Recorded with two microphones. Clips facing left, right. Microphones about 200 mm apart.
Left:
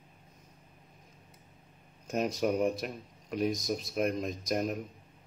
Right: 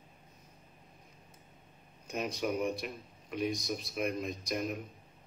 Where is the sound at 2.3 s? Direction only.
40° left (ahead or behind).